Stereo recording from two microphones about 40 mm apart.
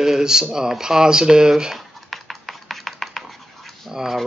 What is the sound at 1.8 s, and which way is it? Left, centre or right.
Stir, centre.